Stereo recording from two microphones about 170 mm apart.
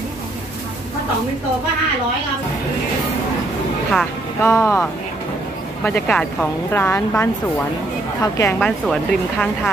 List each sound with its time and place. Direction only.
3.9 s speech: centre (ahead or behind)
4.5 s speech: 15° left (ahead or behind)
5.9 s speech: 5° left (ahead or behind)
8.6 s speech: centre (ahead or behind)